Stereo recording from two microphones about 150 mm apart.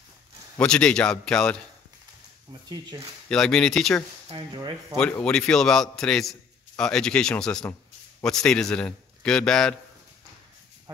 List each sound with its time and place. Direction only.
0.6 s a man's voice: 5° left (ahead or behind)
2.7 s speech: 25° right (ahead or behind)
3.3 s a man's voice: 5° left (ahead or behind)
4.3 s speech: 35° right (ahead or behind)
4.9 s a man's voice: 5° left (ahead or behind)